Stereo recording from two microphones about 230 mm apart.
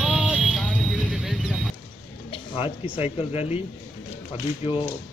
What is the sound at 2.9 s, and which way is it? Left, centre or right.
Speech, left.